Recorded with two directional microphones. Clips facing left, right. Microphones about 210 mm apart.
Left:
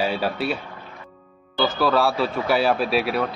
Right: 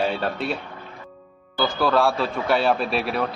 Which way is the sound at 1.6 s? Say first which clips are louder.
Even; centre (ahead or behind).